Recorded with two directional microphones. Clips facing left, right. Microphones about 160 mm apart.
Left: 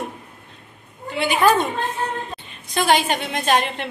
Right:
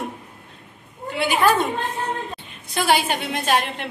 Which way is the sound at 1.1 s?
5° right (ahead or behind).